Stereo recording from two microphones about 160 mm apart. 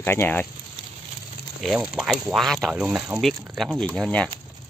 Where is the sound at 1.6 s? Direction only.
Centre (ahead or behind).